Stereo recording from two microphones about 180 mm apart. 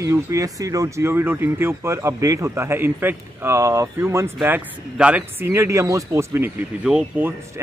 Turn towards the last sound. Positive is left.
turn(degrees=-5)  # may be behind; listen again after turning